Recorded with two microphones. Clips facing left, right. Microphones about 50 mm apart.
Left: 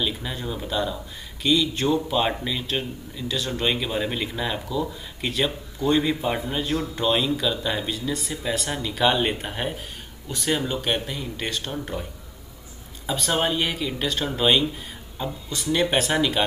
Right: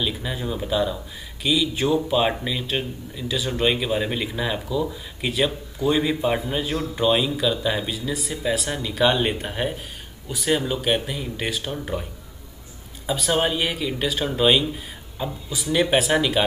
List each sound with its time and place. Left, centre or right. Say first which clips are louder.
0.0 s speech: right 1 dB; centre